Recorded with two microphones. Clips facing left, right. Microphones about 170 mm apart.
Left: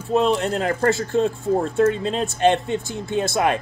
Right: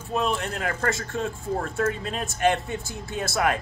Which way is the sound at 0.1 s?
30° left (ahead or behind).